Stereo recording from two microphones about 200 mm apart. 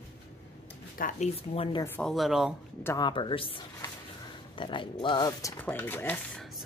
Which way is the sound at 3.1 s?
25° left (ahead or behind).